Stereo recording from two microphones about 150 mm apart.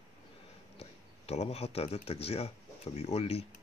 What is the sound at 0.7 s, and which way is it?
Speech, 45° left (ahead or behind).